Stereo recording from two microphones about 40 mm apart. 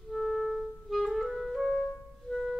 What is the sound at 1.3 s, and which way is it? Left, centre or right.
Music, centre.